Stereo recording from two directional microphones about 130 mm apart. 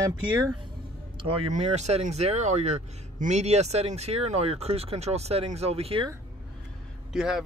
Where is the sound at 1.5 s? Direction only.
60° right (ahead or behind).